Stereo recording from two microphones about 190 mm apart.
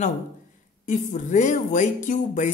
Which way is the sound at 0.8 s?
40° left (ahead or behind).